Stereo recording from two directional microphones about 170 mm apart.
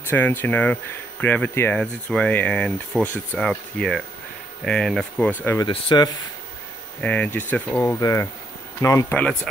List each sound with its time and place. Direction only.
0.1 s speech: 10° left (ahead or behind)
5.6 s speech: 25° left (ahead or behind)
7.0 s speech: 10° left (ahead or behind)
9.2 s speech: 5° left (ahead or behind)